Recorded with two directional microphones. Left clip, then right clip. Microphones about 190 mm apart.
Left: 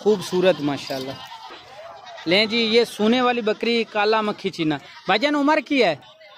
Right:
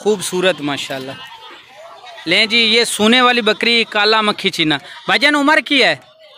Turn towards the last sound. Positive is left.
turn(degrees=0)  # may be behind; listen again after turning